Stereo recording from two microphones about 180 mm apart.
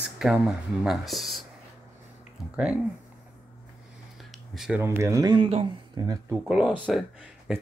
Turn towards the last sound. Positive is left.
turn(degrees=-5)  # may be behind; listen again after turning